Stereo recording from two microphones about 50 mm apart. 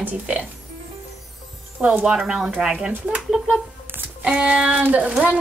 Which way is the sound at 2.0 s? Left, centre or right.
Centre.